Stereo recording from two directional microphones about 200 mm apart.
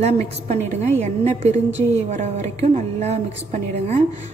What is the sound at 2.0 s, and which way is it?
A woman's voice, 35° right (ahead or behind).